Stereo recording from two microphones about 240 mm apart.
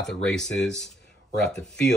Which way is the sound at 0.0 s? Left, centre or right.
Centre.